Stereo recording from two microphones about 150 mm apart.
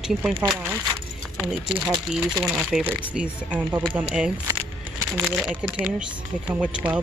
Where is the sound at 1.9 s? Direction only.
5° right (ahead or behind).